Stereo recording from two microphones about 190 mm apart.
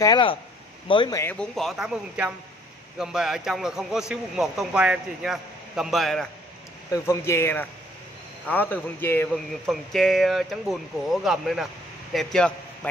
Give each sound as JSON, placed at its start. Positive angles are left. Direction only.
{"t": 0.0, "sound": "speech", "side_deg": 25}
{"t": 1.2, "sound": "speech", "side_deg": 5}
{"t": 6.9, "sound": "a man's voice", "side_deg": 15}
{"t": 9.3, "sound": "speech", "side_deg": 0}